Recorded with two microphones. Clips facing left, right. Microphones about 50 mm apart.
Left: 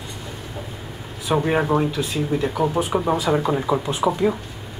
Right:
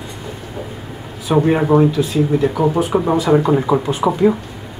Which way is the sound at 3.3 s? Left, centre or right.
Right.